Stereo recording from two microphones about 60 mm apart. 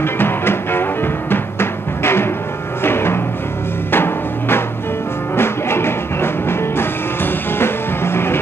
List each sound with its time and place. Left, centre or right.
0.0 s music: left